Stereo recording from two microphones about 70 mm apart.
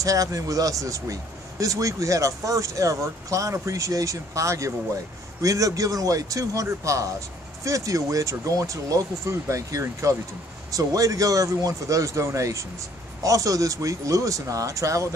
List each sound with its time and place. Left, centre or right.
0.0 s speech: right